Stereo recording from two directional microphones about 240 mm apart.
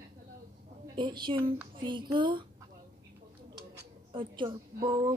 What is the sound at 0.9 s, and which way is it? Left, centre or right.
A woman's voice, centre.